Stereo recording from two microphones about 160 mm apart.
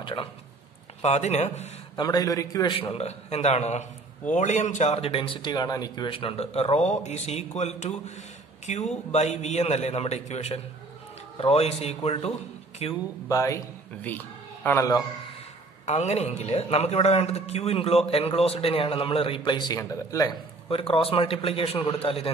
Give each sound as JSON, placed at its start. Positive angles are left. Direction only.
{"t": 0.0, "sound": "speech", "side_deg": 30}
{"t": 1.0, "sound": "a man's voice", "side_deg": 45}
{"t": 2.0, "sound": "a man's voice", "side_deg": 25}
{"t": 13.3, "sound": "speech", "side_deg": 20}
{"t": 15.8, "sound": "a man's voice", "side_deg": 45}
{"t": 20.7, "sound": "a man's voice", "side_deg": 35}